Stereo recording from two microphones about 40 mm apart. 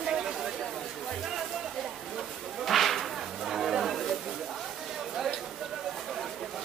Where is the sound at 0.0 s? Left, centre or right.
Centre.